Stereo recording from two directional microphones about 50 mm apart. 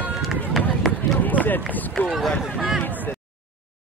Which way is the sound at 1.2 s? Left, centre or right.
Left.